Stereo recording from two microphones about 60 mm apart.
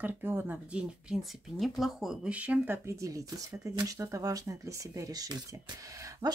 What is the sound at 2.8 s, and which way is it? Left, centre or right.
Speech, right.